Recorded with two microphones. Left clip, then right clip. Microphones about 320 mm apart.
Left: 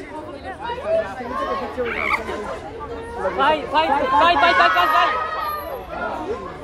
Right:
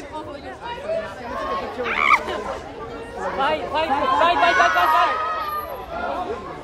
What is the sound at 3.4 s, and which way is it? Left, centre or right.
Speech, centre.